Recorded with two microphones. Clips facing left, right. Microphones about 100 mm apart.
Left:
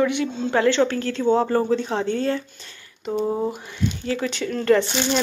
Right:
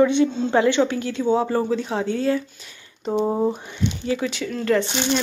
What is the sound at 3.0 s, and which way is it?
Speech, 25° right (ahead or behind).